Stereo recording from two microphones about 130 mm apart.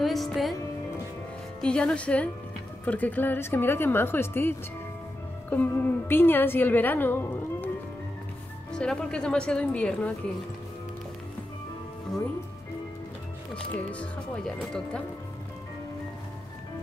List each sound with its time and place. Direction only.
0.0 s music: centre (ahead or behind)
1.6 s a woman's voice: 5° left (ahead or behind)
8.7 s a woman's voice: 5° left (ahead or behind)
13.9 s a woman's voice: 5° left (ahead or behind)